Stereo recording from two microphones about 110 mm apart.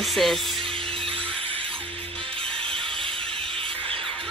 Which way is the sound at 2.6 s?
60° right (ahead or behind).